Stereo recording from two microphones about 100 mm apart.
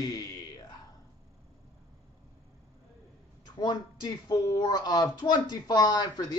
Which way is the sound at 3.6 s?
45° left (ahead or behind).